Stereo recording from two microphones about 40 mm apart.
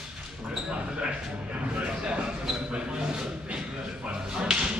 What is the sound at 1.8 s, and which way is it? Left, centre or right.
Speech, right.